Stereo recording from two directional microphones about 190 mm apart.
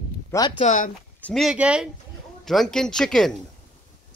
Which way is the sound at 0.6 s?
40° left (ahead or behind).